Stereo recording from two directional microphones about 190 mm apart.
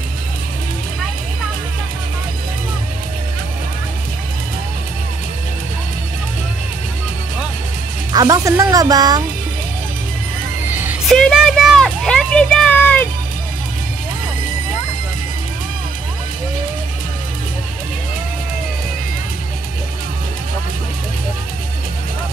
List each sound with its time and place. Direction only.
8.1 s speech: 20° right (ahead or behind)
10.7 s music: 10° right (ahead or behind)
11.1 s a sound: 5° left (ahead or behind)